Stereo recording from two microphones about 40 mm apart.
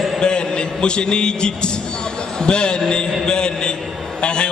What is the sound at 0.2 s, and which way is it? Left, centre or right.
A man's voice, left.